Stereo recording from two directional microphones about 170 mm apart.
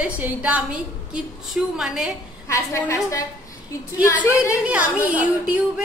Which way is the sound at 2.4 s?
20° left (ahead or behind).